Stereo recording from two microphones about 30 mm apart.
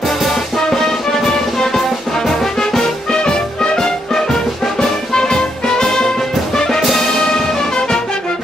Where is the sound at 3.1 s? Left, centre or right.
Left.